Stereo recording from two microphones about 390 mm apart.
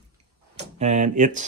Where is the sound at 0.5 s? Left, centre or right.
Centre.